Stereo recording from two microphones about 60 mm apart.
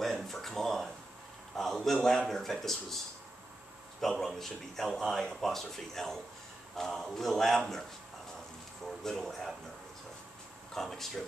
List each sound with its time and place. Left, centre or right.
0.0 s a sound: centre
1.5 s speech: centre
4.0 s speech: centre
8.8 s speech: centre
10.7 s speech: centre